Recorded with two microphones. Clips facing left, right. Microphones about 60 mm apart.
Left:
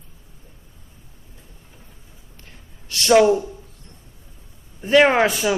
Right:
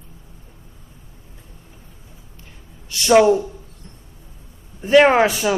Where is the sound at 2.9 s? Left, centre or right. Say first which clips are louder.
Right 1 dB; centre.